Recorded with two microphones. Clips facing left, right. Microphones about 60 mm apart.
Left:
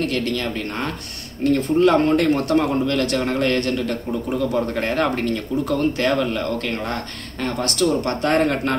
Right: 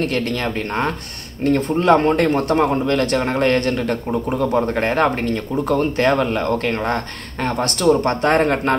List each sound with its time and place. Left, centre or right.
0.0 s speech: right